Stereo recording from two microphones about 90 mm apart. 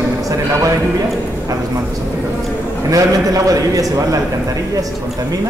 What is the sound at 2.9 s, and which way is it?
A man's voice, 40° right (ahead or behind).